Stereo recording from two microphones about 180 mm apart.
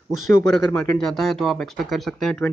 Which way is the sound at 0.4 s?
5° left (ahead or behind).